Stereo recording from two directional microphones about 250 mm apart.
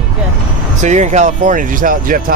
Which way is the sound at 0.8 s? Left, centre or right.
Right.